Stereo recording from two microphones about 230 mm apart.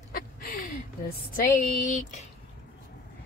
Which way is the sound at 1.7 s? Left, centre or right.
Left.